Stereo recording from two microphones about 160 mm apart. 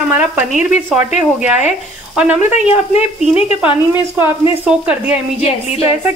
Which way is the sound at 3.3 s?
40° left (ahead or behind).